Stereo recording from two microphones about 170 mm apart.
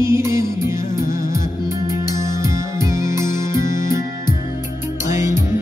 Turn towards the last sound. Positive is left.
turn(degrees=-15)  # may be behind; listen again after turning